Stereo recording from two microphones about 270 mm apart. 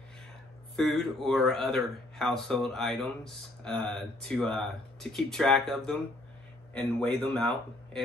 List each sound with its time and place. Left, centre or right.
0.7 s speech: centre